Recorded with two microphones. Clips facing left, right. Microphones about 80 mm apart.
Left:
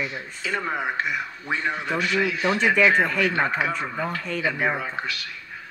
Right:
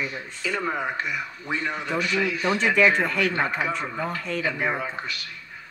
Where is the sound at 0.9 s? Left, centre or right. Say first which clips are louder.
Left 2 dB; left.